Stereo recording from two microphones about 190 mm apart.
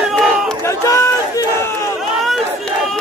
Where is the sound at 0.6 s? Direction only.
15° left (ahead or behind).